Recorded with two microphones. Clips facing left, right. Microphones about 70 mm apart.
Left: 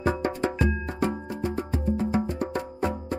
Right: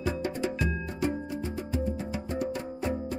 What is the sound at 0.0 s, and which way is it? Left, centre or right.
Music, left.